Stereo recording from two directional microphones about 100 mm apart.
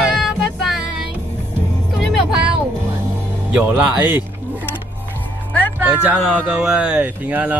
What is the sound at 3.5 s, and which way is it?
Speech, 15° right (ahead or behind).